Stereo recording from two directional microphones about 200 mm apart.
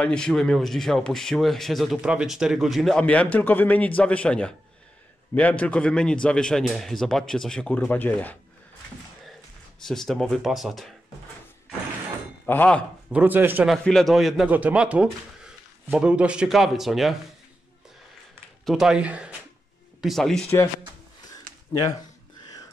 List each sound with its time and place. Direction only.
0.0 s a man's voice: 5° left (ahead or behind)
9.8 s speech: centre (ahead or behind)
12.4 s a man's voice: 10° left (ahead or behind)
13.1 s speech: 10° right (ahead or behind)
13.8 s speech: centre (ahead or behind)
18.7 s speech: 5° right (ahead or behind)